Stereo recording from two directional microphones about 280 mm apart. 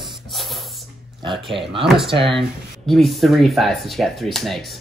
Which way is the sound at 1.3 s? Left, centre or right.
Centre.